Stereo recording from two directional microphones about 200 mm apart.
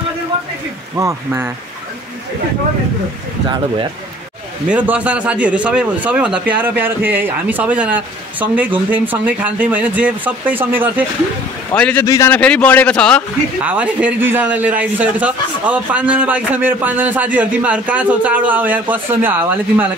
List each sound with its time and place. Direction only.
0.9 s speech: 15° right (ahead or behind)
4.6 s speech: 10° right (ahead or behind)
11.7 s a man's voice: 5° left (ahead or behind)
13.6 s speech: 5° right (ahead or behind)